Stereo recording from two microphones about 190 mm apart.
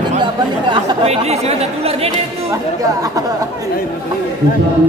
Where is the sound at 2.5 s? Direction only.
15° right (ahead or behind).